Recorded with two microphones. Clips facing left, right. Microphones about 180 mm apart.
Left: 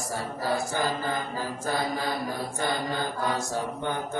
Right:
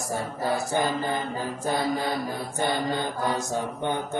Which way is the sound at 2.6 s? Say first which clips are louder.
Right 4 dB; 20° right (ahead or behind).